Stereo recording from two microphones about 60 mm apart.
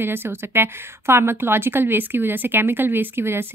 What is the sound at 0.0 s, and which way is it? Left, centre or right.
A woman's voice, right.